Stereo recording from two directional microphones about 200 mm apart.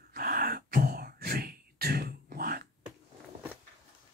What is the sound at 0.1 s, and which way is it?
Throat clearing, 45° right (ahead or behind).